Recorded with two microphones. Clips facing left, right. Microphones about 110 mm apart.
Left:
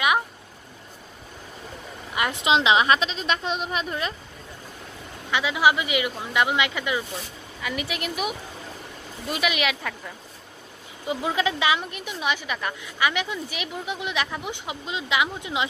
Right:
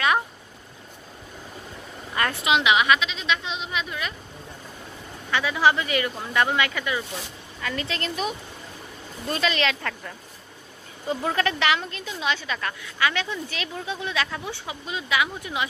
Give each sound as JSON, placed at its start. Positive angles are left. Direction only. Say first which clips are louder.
{"t": 2.1, "sound": "a sound", "louder": "even", "side_deg": 15}
{"t": 2.4, "sound": "a woman's voice", "louder": "left 1 dB", "side_deg": 30}
{"t": 5.3, "sound": "a woman's voice", "louder": "even", "side_deg": 15}